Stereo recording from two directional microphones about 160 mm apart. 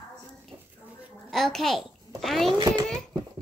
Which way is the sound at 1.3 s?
Centre (ahead or behind).